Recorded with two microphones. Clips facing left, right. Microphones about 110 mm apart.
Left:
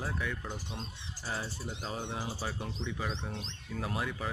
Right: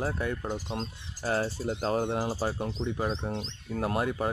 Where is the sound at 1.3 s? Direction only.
75° right (ahead or behind).